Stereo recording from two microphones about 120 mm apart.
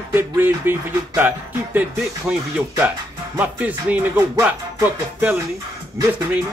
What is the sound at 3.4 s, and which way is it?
Speech, 15° right (ahead or behind).